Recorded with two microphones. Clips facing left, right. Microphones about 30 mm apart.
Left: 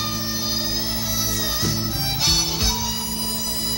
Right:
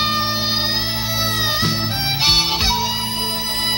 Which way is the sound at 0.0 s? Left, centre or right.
Right.